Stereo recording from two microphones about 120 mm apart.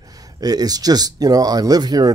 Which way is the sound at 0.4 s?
35° right (ahead or behind).